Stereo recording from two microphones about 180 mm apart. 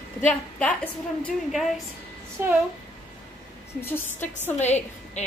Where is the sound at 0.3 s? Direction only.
5° left (ahead or behind).